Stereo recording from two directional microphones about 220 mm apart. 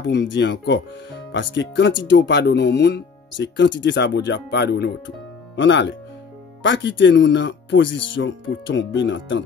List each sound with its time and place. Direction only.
0.0 s speech: 55° left (ahead or behind)